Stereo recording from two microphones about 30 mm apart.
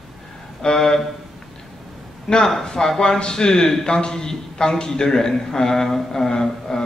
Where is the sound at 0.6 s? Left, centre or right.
Centre.